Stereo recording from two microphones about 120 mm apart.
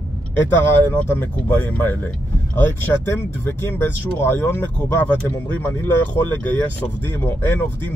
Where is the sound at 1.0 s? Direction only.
15° left (ahead or behind).